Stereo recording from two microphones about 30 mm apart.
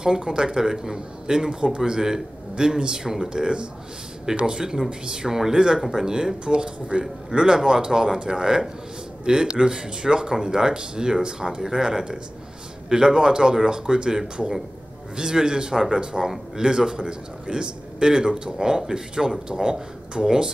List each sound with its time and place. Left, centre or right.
0.0 s a man's voice: right
5.8 s speech: centre
6.0 s a man's voice: right